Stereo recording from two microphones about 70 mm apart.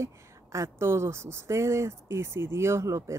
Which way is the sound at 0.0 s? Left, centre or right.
Right.